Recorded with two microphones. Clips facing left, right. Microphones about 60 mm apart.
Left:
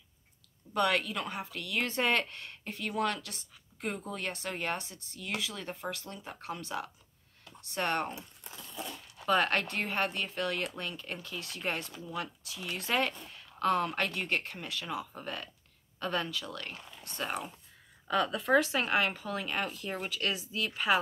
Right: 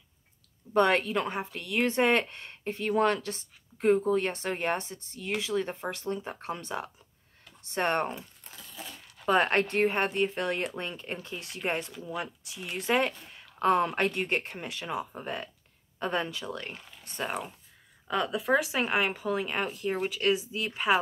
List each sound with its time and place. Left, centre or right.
0.7 s speech: right
9.3 s speech: right
17.2 s speech: centre